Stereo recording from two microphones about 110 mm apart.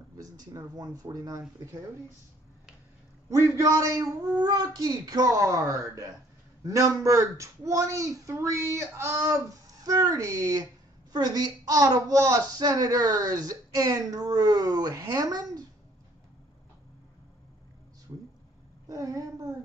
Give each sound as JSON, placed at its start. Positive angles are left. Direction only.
{"t": 0.2, "sound": "speech", "side_deg": -35}
{"t": 3.5, "sound": "speech", "side_deg": -30}
{"t": 18.1, "sound": "a sound", "side_deg": -25}
{"t": 18.9, "sound": "speech", "side_deg": -30}